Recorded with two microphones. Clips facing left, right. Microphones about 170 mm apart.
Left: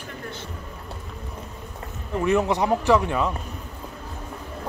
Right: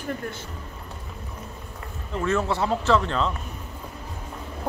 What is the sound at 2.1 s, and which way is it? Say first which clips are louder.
Speech: left 3 dB; 15° left (ahead or behind).